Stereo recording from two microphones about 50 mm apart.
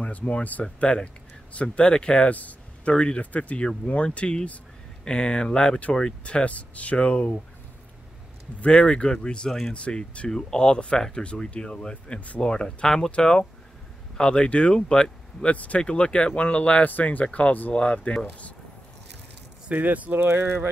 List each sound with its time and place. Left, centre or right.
0.0 s speech: left
8.5 s speech: left
9.5 s speech: centre
9.8 s speech: left
15.5 s speech: left
15.8 s speech: centre
17.7 s speech: left
19.7 s speech: right
20.2 s speech: right